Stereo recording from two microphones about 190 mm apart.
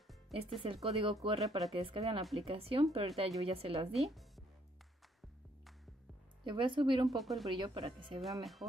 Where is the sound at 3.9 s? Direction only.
Centre (ahead or behind).